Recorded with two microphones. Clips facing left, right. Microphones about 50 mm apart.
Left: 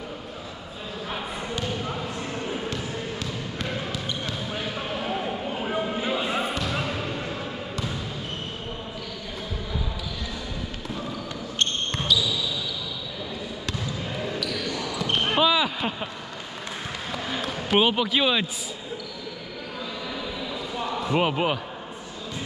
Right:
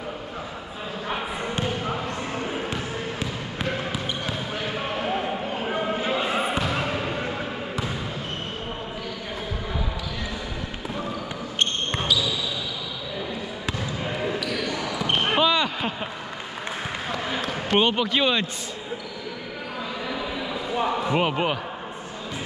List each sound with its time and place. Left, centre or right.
1.0 s basketball bounce: centre
6.2 s basketball bounce: right
11.9 s basketball bounce: centre
13.9 s basketball bounce: right
15.3 s basketball bounce: centre
17.1 s basketball bounce: centre
17.6 s speech: centre
20.1 s a sound: centre
21.1 s speech: centre